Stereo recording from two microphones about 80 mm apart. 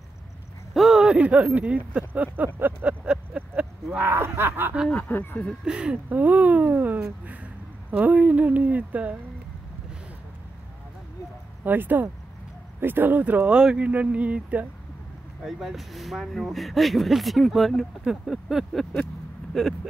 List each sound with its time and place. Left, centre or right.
0.7 s a sound: centre
1.1 s speech: centre
2.0 s a sound: centre
4.0 s speech: right
4.9 s speech: left
5.7 s speech: centre
11.6 s speech: right
15.4 s speech: centre